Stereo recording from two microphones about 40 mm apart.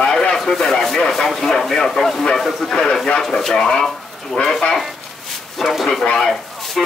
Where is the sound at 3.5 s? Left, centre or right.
Centre.